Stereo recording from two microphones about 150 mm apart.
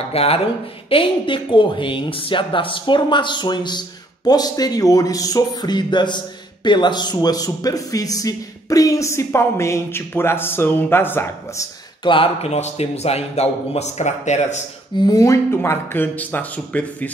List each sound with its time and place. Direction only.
0.1 s a woman's voice: 40° left (ahead or behind); by 11.6 s 15° left (ahead or behind)
12.0 s a man's voice: 35° left (ahead or behind)
15.0 s speech: 25° left (ahead or behind); by 17.1 s 10° left (ahead or behind)